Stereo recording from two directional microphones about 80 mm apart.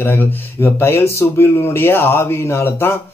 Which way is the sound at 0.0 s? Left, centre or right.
Left.